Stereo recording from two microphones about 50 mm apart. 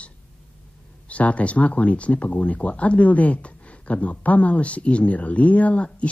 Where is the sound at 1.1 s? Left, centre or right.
Left.